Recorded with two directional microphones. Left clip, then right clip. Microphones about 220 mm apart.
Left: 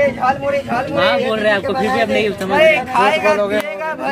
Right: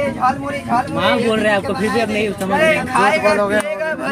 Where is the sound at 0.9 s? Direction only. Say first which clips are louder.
Left 4 dB; 35° right (ahead or behind).